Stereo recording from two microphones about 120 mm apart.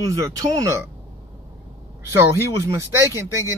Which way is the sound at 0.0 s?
30° right (ahead or behind).